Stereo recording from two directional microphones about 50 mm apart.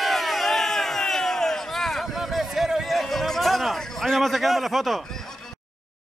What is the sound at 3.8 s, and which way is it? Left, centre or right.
A man's voice, centre.